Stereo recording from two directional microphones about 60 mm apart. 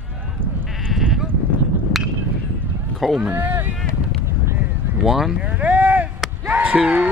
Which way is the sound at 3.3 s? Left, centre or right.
Right.